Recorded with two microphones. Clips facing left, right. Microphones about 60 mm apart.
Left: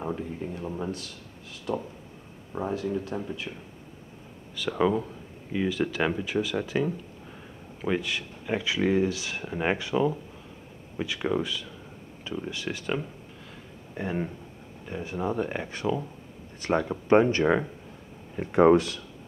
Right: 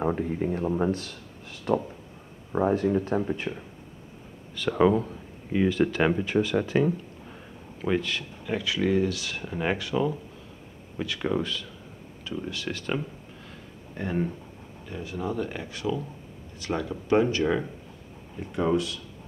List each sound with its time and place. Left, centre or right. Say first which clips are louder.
0.0 s speech: right 6 dB; right
0.8 s a sound: right 6 dB; right
2.5 s speech: right 6 dB; right
4.6 s speech: right 3 dB; centre
6.7 s speech: right 4 dB; centre
7.8 s speech: right 1 dB; centre
12.3 s speech: even; left
12.6 s speech: even; centre
14.9 s speech: left 2 dB; left
18.4 s speech: left 7 dB; left